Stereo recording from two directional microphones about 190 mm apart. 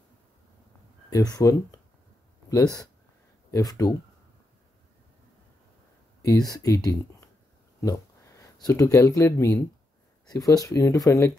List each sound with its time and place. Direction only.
1.1 s speech: 20° left (ahead or behind)
6.2 s speech: 20° left (ahead or behind)
8.6 s speech: 15° left (ahead or behind)